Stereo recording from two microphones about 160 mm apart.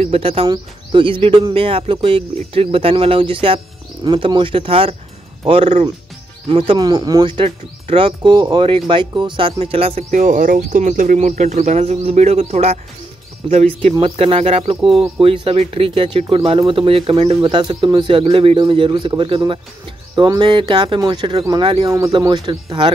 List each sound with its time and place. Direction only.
0.0 s speech: 40° right (ahead or behind)
10.2 s speech: 55° right (ahead or behind)
13.9 s speech: 35° right (ahead or behind)
21.8 s speech: 20° right (ahead or behind)